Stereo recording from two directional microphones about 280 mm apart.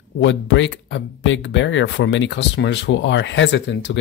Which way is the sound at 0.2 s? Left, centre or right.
Left.